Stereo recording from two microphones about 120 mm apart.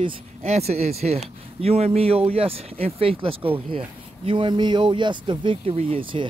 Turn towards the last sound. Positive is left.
turn(degrees=-45)  # may be behind; listen again after turning